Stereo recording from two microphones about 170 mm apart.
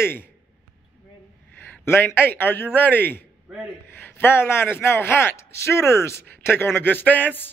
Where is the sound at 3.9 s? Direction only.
10° left (ahead or behind).